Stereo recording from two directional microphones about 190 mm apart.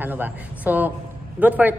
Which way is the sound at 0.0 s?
10° right (ahead or behind).